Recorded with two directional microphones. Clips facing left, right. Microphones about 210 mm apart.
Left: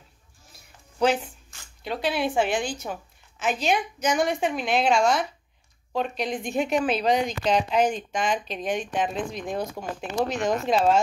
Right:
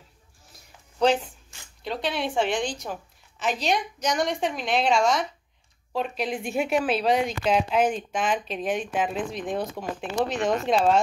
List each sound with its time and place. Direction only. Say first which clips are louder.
1.8 s a woman's voice: left 2 dB; 5° left (ahead or behind)